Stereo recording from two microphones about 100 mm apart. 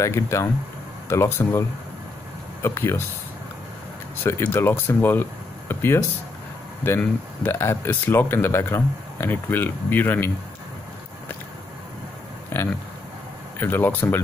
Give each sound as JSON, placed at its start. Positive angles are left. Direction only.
{"t": 0.0, "sound": "speech", "side_deg": 30}
{"t": 4.2, "sound": "speech", "side_deg": 20}
{"t": 5.7, "sound": "a sound", "side_deg": 20}
{"t": 6.8, "sound": "speech", "side_deg": 20}
{"t": 13.6, "sound": "speech", "side_deg": 20}